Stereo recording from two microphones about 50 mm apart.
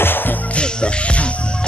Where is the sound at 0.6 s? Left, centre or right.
Left.